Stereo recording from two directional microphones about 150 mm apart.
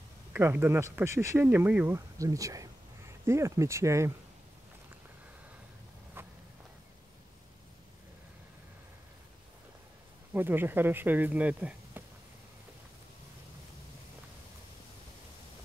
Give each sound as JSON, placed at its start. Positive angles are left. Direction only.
{"t": 0.3, "sound": "speech", "side_deg": -15}
{"t": 6.2, "sound": "vehicle", "side_deg": -15}
{"t": 10.3, "sound": "speech", "side_deg": -15}